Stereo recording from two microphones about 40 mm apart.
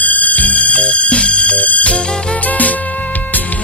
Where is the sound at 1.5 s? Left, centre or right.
Left.